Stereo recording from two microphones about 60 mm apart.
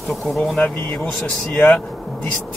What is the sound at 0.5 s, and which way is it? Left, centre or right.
Speech, left.